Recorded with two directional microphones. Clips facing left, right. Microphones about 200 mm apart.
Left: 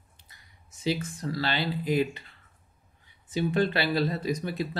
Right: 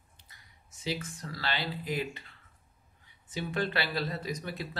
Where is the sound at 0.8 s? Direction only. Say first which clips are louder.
Left 7 dB; 25° left (ahead or behind).